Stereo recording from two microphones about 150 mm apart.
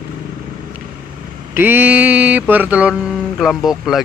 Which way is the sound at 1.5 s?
15° right (ahead or behind).